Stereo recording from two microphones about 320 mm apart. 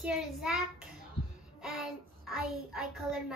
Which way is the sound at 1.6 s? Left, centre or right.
Centre.